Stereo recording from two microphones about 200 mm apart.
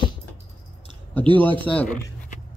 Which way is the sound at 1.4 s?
5° left (ahead or behind).